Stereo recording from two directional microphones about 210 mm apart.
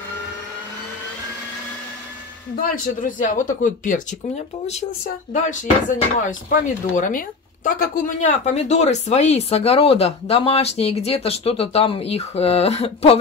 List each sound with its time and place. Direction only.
2.6 s speech: 40° left (ahead or behind)